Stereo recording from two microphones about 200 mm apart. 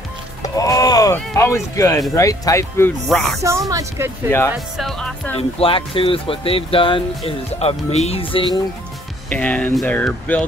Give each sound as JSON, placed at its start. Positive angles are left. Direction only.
{"t": 0.4, "sound": "music", "side_deg": 15}
{"t": 2.1, "sound": "speech", "side_deg": 15}
{"t": 3.1, "sound": "speech", "side_deg": 0}
{"t": 3.4, "sound": "speech", "side_deg": -15}
{"t": 4.5, "sound": "speech", "side_deg": 0}
{"t": 5.6, "sound": "speech", "side_deg": 25}
{"t": 9.3, "sound": "speech", "side_deg": 5}